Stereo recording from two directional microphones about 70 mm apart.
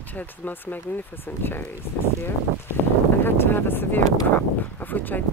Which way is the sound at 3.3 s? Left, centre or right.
Left.